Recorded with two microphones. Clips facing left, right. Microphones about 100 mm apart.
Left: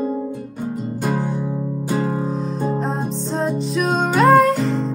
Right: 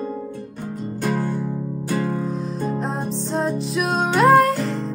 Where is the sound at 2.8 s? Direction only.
Centre (ahead or behind).